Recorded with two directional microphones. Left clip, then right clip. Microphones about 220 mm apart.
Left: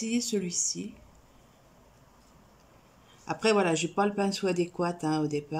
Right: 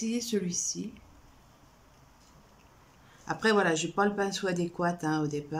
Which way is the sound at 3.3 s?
5° left (ahead or behind).